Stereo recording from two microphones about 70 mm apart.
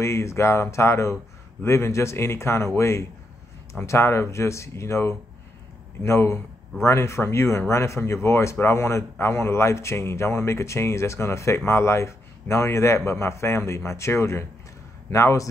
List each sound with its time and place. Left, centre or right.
0.0 s speech: left